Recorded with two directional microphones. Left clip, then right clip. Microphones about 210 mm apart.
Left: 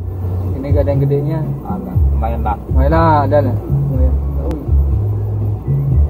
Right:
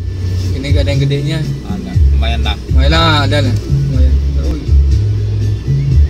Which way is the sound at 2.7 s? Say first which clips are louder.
Even; 50° right (ahead or behind).